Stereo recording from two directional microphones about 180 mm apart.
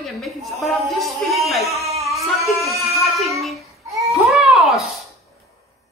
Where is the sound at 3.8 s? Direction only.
15° right (ahead or behind).